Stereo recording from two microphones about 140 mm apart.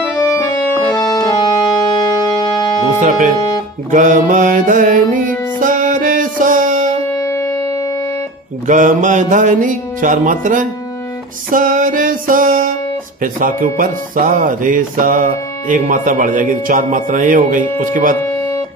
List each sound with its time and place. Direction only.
0.2 s music: 20° left (ahead or behind)
3.0 s music: 65° right (ahead or behind)
3.3 s music: 30° left (ahead or behind)
3.9 s speech: 65° right (ahead or behind)
5.6 s music: 70° right (ahead or behind)
7.1 s civil defense siren: 20° left (ahead or behind)
8.6 s music: 65° right (ahead or behind)
11.5 s speech: 70° right (ahead or behind)